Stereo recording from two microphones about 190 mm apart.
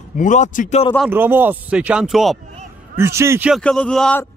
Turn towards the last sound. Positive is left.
turn(degrees=5)  # may be behind; listen again after turning